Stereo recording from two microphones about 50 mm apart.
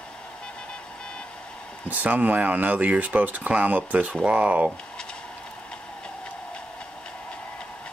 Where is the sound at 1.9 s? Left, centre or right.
Right.